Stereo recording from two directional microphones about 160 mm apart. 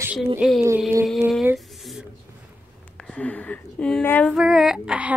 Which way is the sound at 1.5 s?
Centre (ahead or behind).